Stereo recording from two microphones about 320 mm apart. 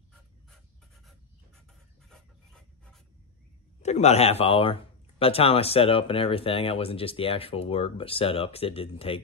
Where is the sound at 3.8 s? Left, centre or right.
Left.